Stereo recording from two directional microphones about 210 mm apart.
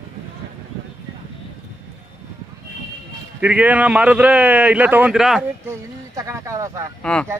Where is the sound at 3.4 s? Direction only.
5° right (ahead or behind).